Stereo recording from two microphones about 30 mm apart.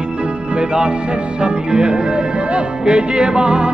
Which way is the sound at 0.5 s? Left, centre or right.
Right.